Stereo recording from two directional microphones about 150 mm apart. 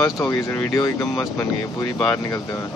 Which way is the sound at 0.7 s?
20° left (ahead or behind).